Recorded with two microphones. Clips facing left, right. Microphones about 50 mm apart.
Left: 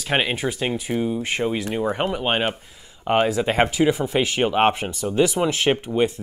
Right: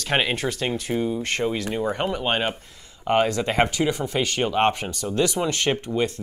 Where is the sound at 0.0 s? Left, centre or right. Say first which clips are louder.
Left 1 dB; centre.